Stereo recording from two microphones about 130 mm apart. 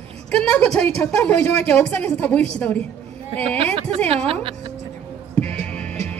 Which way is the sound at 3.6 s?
50° right (ahead or behind).